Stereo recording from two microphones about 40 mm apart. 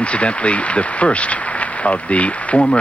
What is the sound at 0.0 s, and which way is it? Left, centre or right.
Speech, left.